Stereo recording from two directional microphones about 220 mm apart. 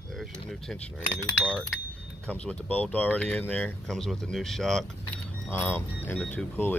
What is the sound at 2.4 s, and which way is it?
Speech, 5° left (ahead or behind).